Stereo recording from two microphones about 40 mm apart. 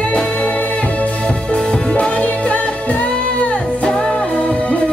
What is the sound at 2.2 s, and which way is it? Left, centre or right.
Music, left.